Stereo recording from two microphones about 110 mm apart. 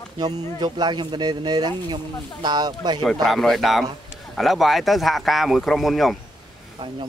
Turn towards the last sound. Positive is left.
turn(degrees=0)  # may be behind; listen again after turning